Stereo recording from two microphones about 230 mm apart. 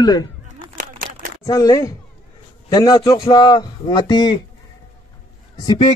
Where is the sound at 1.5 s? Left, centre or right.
Centre.